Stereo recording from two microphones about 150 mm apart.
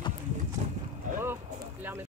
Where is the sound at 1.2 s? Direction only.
15° right (ahead or behind).